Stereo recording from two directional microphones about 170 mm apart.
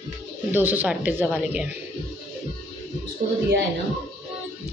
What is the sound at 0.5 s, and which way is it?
A woman's voice, 10° right (ahead or behind).